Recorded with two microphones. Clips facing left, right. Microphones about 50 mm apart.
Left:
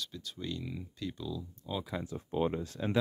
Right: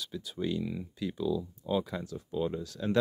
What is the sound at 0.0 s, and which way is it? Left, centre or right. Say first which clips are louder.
Speech: right 6 dB; centre.